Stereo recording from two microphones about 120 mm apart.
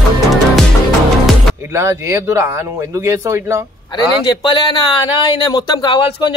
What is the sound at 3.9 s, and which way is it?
A man's voice, 40° left (ahead or behind).